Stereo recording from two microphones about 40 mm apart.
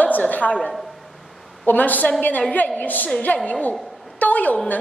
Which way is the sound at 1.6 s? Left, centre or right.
Left.